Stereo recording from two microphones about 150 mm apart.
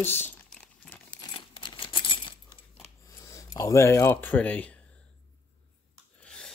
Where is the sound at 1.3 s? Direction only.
35° left (ahead or behind).